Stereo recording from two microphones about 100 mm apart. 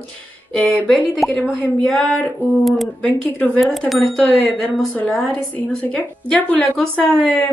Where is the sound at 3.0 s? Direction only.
10° left (ahead or behind).